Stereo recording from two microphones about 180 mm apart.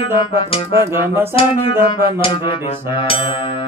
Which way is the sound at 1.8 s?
25° left (ahead or behind).